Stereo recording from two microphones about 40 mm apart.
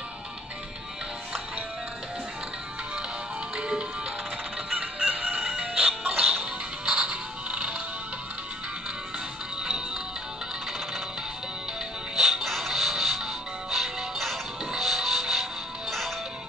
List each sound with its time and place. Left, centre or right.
3.5 s music: centre; by 5.4 s right
5.6 s music: right
6.0 s music: right
6.4 s music: right
9.6 s music: centre
12.2 s music: centre